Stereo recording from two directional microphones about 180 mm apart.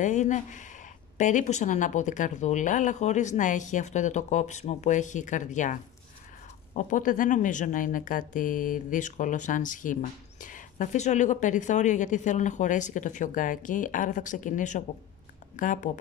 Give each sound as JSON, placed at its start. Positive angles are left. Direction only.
{"t": 0.0, "sound": "speech", "side_deg": 40}